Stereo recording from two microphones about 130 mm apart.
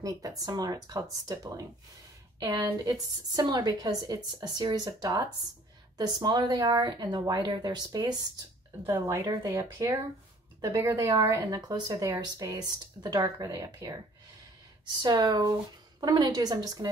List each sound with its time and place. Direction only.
0.0 s speech: 30° right (ahead or behind)
15.0 s speech: 35° right (ahead or behind)